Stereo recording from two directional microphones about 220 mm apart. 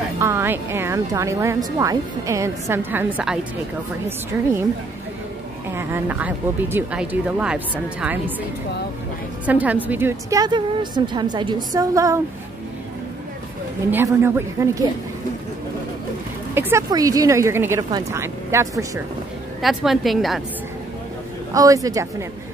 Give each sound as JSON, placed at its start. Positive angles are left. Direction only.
{"t": 0.2, "sound": "speech", "side_deg": -10}
{"t": 5.8, "sound": "speech", "side_deg": -10}
{"t": 9.5, "sound": "speech", "side_deg": -5}
{"t": 13.8, "sound": "speech", "side_deg": -10}
{"t": 16.5, "sound": "speech", "side_deg": -10}
{"t": 19.6, "sound": "a woman's voice", "side_deg": 0}
{"t": 21.5, "sound": "speech", "side_deg": -15}